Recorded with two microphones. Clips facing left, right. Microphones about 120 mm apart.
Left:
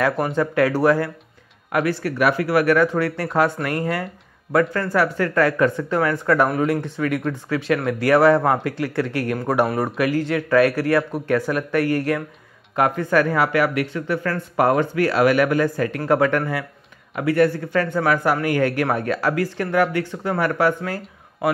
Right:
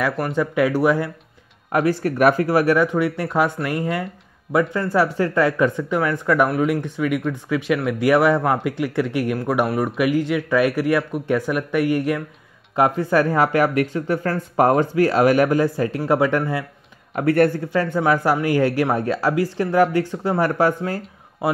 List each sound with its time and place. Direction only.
0.3 s speech: 10° right (ahead or behind)
1.7 s speech: 35° right (ahead or behind); by 9.4 s 20° right (ahead or behind)
9.4 s speech: 5° right (ahead or behind)
12.7 s speech: 25° right (ahead or behind)
17.1 s speech: 45° right (ahead or behind)
18.0 s speech: 25° right (ahead or behind)